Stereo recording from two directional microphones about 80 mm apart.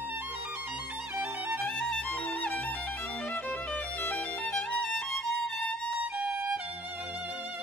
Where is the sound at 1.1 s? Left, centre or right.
Right.